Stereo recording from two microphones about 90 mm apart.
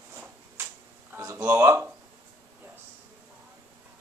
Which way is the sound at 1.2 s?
35° right (ahead or behind).